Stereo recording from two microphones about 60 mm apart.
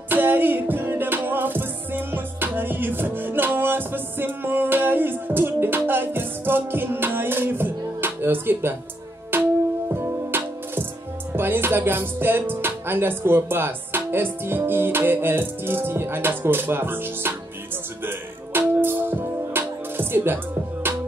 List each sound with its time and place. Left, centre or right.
0.1 s music: right